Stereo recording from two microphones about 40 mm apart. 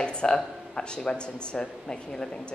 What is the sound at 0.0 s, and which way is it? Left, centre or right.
Speech, left.